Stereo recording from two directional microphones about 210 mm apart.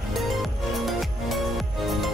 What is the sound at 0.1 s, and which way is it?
Music, centre (ahead or behind).